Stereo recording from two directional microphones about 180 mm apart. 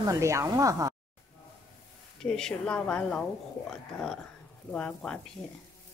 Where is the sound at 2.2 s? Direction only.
5° left (ahead or behind).